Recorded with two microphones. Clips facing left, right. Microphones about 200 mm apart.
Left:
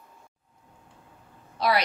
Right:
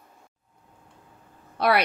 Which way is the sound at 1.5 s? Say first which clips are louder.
Right 3 dB; 60° right (ahead or behind).